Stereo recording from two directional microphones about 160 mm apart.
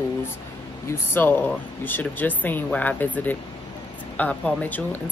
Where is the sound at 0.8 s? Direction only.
10° left (ahead or behind).